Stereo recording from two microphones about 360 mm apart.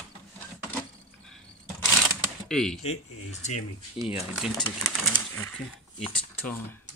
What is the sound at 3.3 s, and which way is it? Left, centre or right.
Speech, centre.